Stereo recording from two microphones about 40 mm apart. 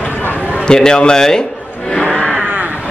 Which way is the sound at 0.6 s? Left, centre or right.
Centre.